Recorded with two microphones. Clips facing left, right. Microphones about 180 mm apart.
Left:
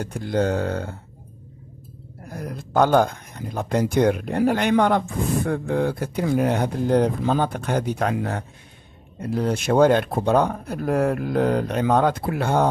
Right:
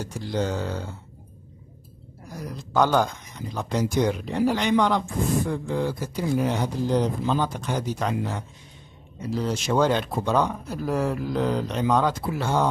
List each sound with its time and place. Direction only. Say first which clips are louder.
0.0 s speech: left 5 dB; 55° left (ahead or behind)
2.2 s speech: left 3 dB; 55° left (ahead or behind)